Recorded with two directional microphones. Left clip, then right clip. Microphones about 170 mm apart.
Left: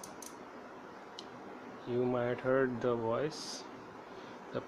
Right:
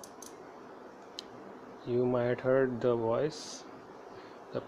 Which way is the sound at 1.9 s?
15° right (ahead or behind).